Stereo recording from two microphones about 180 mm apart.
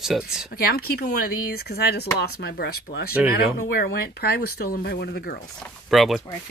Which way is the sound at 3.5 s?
60° left (ahead or behind).